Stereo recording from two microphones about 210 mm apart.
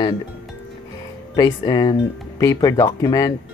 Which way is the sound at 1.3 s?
20° left (ahead or behind).